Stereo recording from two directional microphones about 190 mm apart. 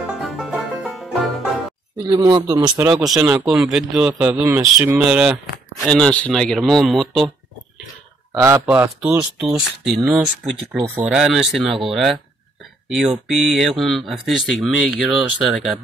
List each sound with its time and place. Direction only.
0.2 s music: centre (ahead or behind)
2.0 s speech: 25° right (ahead or behind)
2.7 s speech: 5° right (ahead or behind)
8.3 s speech: 10° right (ahead or behind)